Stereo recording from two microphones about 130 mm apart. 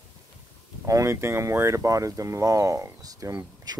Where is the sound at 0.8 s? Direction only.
25° right (ahead or behind).